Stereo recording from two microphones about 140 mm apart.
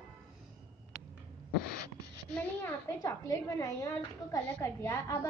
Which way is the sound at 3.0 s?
20° left (ahead or behind).